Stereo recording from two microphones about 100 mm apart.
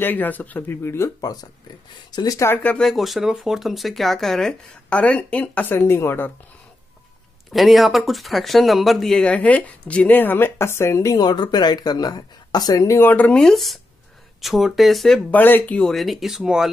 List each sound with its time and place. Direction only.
0.0 s speech: 20° left (ahead or behind)
2.6 s speech: 10° left (ahead or behind)
5.8 s speech: 25° left (ahead or behind)
7.5 s speech: centre (ahead or behind); by 13.1 s 30° left (ahead or behind)
13.1 s speech: 10° left (ahead or behind)
15.3 s speech: 20° left (ahead or behind)
15.9 s speech: centre (ahead or behind)